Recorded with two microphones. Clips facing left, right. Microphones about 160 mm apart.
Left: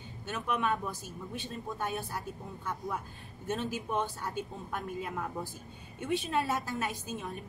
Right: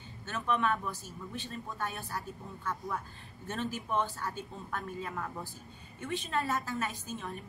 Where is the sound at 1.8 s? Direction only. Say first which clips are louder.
Left 2 dB; 15° left (ahead or behind).